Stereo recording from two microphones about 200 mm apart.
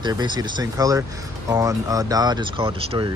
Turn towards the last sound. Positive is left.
turn(degrees=-25)  # may be behind; listen again after turning